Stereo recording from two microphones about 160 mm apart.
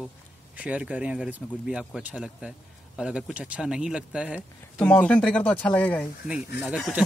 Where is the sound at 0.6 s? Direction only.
10° right (ahead or behind).